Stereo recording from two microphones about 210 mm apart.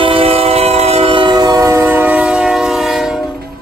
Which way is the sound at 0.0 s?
25° right (ahead or behind).